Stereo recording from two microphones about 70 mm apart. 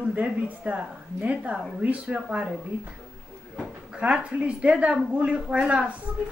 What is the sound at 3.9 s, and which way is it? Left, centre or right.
A woman's voice, centre.